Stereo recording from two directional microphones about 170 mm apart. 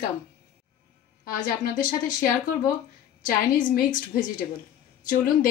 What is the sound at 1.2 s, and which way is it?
Speech, 55° left (ahead or behind).